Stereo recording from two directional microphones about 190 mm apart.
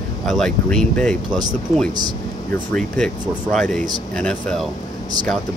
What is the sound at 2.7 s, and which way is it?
Speech, 5° left (ahead or behind).